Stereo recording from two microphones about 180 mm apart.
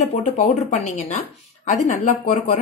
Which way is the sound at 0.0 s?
40° left (ahead or behind).